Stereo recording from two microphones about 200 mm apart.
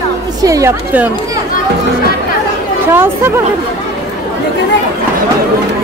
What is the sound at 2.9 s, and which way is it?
Speech, 10° right (ahead or behind).